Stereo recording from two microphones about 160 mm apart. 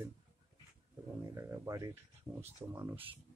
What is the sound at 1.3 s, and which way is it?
Speech, 20° right (ahead or behind).